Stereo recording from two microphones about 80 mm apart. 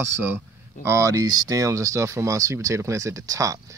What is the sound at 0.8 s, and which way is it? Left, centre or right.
Speech, right.